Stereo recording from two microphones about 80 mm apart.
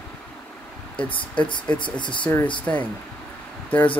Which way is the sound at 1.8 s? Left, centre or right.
Left.